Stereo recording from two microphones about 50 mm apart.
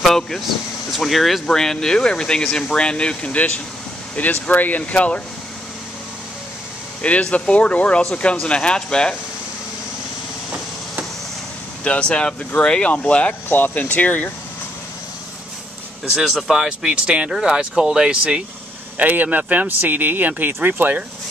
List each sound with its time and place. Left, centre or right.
0.0 s speech: centre; by 5.2 s left
7.0 s speech: left
11.8 s speech: left
13.5 s speech: left
16.2 s speech: centre
16.8 s speech: right
18.9 s speech: right